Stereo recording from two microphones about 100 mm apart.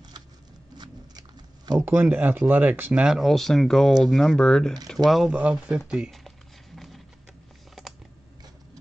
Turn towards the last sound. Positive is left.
turn(degrees=0)  # may be behind; listen again after turning